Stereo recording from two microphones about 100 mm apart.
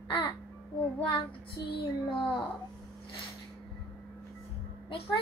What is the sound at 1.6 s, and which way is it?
Speech, 60° left (ahead or behind).